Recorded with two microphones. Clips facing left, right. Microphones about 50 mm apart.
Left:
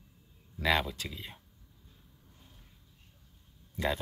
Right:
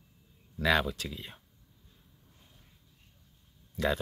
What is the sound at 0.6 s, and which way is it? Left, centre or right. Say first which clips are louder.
Speech: right 2 dB; centre.